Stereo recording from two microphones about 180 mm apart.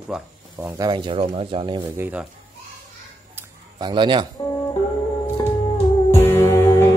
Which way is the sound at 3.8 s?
25° right (ahead or behind).